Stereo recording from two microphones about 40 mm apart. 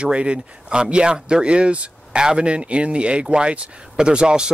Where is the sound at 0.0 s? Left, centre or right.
Right.